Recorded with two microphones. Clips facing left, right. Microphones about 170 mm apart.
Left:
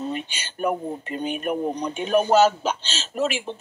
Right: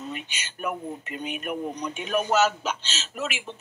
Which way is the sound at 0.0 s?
30° left (ahead or behind).